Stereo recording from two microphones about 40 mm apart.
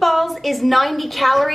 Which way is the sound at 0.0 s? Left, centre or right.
Centre.